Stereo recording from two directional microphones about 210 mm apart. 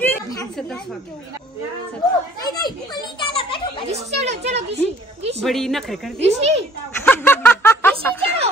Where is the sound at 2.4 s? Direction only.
20° left (ahead or behind).